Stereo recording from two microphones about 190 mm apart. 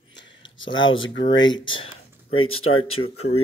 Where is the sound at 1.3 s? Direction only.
80° left.